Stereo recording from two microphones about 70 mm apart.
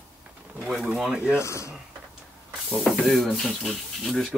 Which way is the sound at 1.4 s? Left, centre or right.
Left.